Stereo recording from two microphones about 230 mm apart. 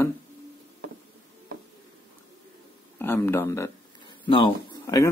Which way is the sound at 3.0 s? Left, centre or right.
Centre.